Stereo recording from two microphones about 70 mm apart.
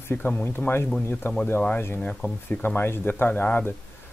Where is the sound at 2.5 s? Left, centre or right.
Left.